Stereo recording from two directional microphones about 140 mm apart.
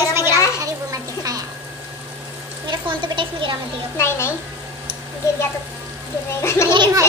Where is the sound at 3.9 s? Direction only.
15° left (ahead or behind).